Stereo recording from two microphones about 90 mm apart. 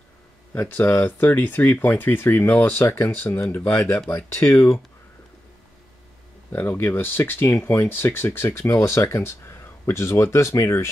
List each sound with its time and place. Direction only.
0.6 s speech: 20° left (ahead or behind)
6.5 s speech: 25° left (ahead or behind)